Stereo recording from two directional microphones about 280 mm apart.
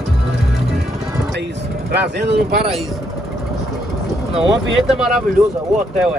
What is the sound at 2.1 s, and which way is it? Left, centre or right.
Speech, right.